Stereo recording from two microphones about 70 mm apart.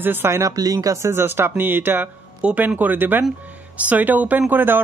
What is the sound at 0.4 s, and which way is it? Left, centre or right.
Speech, right.